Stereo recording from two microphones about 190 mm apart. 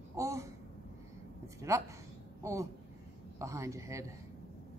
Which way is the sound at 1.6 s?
15° right (ahead or behind).